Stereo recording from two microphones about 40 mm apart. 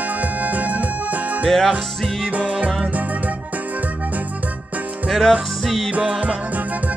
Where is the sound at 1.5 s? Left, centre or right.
Centre.